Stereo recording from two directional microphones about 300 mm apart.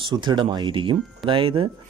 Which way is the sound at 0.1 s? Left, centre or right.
Centre.